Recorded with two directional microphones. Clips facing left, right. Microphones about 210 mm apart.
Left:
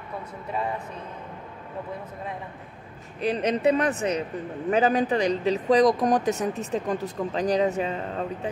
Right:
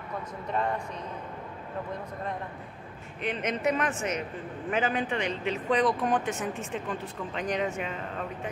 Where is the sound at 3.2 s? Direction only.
35° left (ahead or behind).